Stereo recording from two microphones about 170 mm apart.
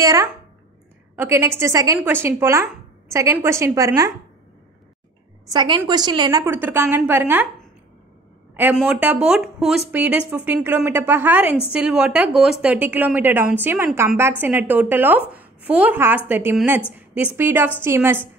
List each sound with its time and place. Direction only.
0.0 s a woman's voice: 20° right (ahead or behind)
5.5 s a woman's voice: 25° right (ahead or behind)
6.4 s a woman's voice: 15° right (ahead or behind)
8.7 s a woman's voice: 5° right (ahead or behind)